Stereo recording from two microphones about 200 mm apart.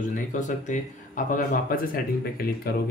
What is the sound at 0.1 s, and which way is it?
Speech, 40° left (ahead or behind).